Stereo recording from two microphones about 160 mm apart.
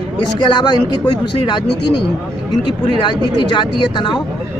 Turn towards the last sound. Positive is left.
turn(degrees=30)  # may be behind; listen again after turning